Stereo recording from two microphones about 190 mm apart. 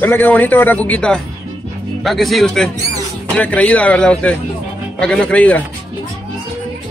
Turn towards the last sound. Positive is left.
turn(degrees=10)  # may be behind; listen again after turning